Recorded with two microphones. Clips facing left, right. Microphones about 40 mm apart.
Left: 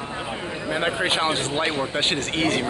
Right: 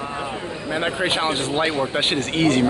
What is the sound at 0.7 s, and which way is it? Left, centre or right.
Music, centre.